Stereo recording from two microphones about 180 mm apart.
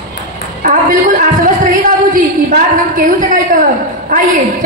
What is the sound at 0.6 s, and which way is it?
A woman's voice, 50° right (ahead or behind).